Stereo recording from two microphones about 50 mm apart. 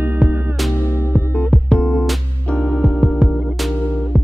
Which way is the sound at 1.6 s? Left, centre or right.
Left.